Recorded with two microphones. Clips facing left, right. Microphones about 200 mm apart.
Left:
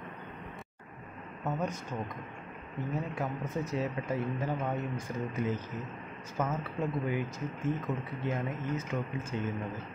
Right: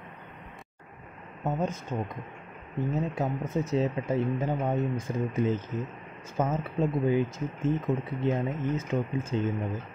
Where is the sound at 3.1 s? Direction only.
25° right (ahead or behind).